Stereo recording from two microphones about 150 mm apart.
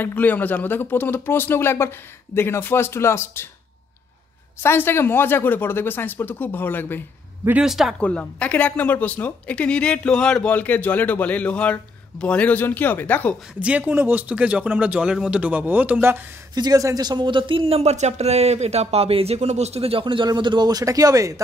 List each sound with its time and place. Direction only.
0.0 s speech: 10° left (ahead or behind)
4.6 s speech: 15° left (ahead or behind)
7.4 s speech: 5° right (ahead or behind)
8.0 s speech: 10° left (ahead or behind)
13.6 s speech: 10° right (ahead or behind)
16.5 s speech: 25° right (ahead or behind)